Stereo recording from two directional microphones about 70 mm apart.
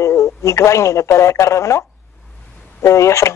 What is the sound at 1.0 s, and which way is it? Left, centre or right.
Speech, left.